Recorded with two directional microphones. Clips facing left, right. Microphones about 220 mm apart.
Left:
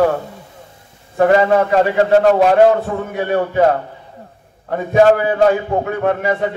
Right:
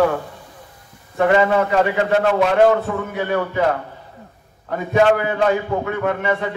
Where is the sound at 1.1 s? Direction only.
35° left (ahead or behind).